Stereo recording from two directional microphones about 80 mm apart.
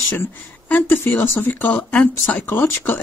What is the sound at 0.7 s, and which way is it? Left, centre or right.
Speech, left.